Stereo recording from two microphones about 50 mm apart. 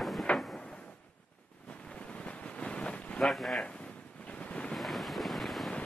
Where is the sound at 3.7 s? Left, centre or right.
Left.